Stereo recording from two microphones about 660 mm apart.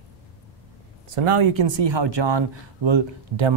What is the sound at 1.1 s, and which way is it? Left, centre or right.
Speech, right.